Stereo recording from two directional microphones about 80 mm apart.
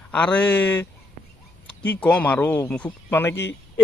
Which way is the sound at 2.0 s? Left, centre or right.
Centre.